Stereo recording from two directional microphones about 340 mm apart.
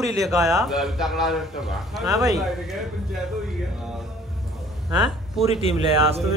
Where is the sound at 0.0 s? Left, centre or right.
Centre.